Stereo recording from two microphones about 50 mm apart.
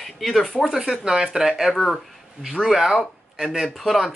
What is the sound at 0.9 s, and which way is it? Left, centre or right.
Speech, centre.